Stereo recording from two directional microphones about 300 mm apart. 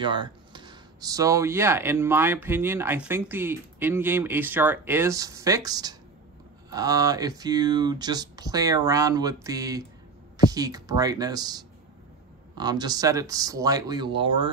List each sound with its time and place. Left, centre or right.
0.0 s speech: centre